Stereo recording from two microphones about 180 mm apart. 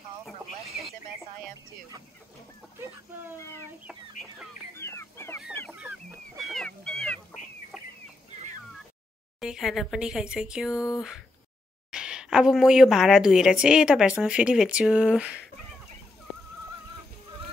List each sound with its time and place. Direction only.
3.3 s speech: 15° left (ahead or behind)
3.8 s a woman's voice: 5° right (ahead or behind)
4.7 s chicken: 15° left (ahead or behind)
5.7 s chicken: 10° right (ahead or behind)
6.5 s dog: 5° left (ahead or behind)
9.4 s a woman's voice: centre (ahead or behind)
11.9 s a woman's voice: 5° right (ahead or behind)